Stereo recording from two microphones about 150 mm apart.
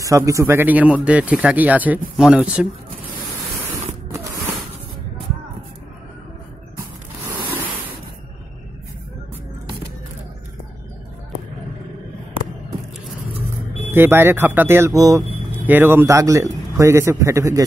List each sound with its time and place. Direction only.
0.0 s speech: 20° right (ahead or behind)
6.8 s a sound: 15° right (ahead or behind)
13.8 s a man's voice: 15° right (ahead or behind)